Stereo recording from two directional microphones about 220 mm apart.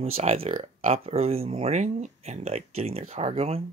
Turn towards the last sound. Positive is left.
turn(degrees=-30)  # may be behind; listen again after turning